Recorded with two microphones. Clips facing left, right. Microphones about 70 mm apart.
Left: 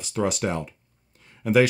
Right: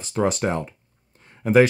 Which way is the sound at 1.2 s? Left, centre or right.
Right.